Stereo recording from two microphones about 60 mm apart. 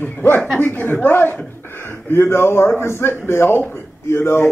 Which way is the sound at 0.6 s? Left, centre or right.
Left.